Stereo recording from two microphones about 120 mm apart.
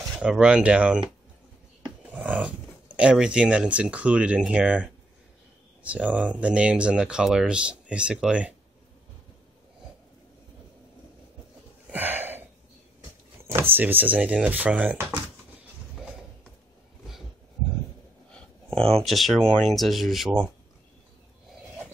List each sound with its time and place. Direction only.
0.2 s speech: 5° right (ahead or behind)
2.0 s speech: 15° right (ahead or behind)
11.9 s a sound: 15° right (ahead or behind)
13.4 s speech: 20° right (ahead or behind)
18.3 s speech: 5° left (ahead or behind)